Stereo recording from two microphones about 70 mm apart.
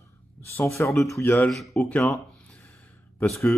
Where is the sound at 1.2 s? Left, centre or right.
Left.